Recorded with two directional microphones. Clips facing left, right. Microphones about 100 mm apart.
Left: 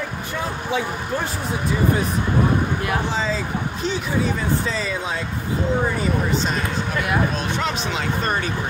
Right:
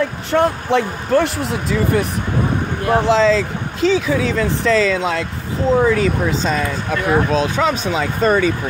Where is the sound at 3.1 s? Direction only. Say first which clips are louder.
Right 10 dB; 90° right.